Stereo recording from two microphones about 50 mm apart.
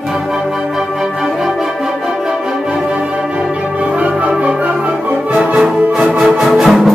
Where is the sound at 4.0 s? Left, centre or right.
Right.